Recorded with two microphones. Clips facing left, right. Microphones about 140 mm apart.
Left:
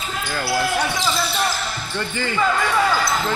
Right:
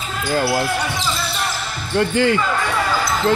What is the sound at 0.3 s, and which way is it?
Speech, 40° right (ahead or behind).